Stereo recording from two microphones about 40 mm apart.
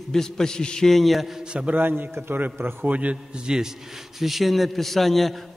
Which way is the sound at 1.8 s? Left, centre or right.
Right.